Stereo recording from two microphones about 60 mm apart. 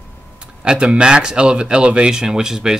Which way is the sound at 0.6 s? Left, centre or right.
Centre.